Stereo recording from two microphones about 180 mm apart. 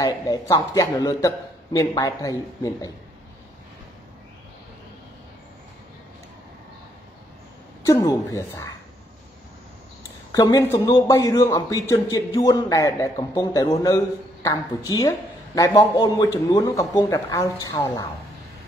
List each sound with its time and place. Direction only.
0.0 s a man's voice: 20° left (ahead or behind)
7.8 s a man's voice: 20° left (ahead or behind)
10.3 s a man's voice: 20° left (ahead or behind)